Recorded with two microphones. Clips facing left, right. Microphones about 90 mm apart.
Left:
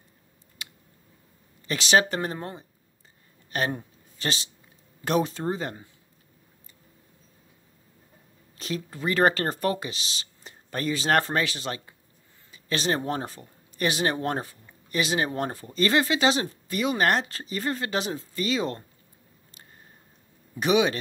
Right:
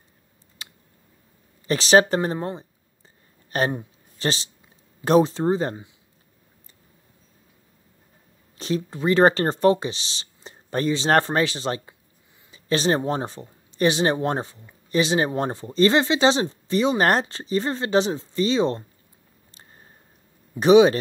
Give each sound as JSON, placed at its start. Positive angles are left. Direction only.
{"t": 0.6, "sound": "a sound", "side_deg": -35}
{"t": 1.7, "sound": "speech", "side_deg": -35}
{"t": 8.5, "sound": "speech", "side_deg": -30}
{"t": 20.5, "sound": "speech", "side_deg": -35}